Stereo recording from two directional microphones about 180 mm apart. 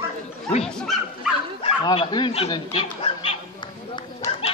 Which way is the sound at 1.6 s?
30° left (ahead or behind).